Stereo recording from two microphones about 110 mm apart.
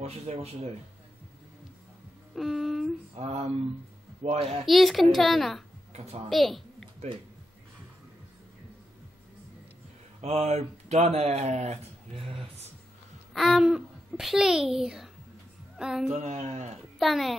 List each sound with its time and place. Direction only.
0.0 s speech: 70° right (ahead or behind)
2.3 s speech: centre (ahead or behind)
3.2 s speech: 70° right (ahead or behind)
4.6 s a woman's voice: centre (ahead or behind)
10.2 s speech: 80° right
12.3 s a sound: 70° right (ahead or behind)
13.3 s a child's voice: centre (ahead or behind)
16.2 s speech: 85° right
17.0 s a woman's voice: centre (ahead or behind)